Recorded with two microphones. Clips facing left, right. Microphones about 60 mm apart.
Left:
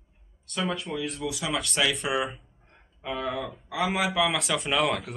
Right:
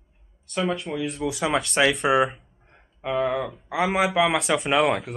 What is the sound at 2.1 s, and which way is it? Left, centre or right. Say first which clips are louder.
Speech: right 8 dB; right.